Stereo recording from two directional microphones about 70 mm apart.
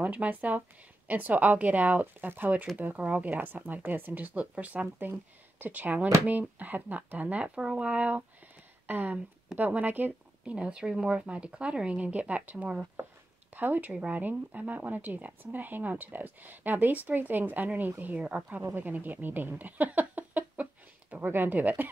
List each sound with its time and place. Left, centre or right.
0.0 s speech: right
3.0 s speech: centre
3.3 s speech: right
18.6 s speech: right